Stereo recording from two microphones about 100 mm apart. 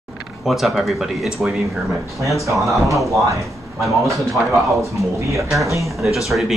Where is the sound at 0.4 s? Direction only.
Centre (ahead or behind).